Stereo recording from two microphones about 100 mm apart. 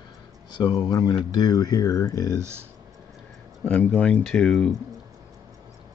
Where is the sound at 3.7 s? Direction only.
15° left (ahead or behind).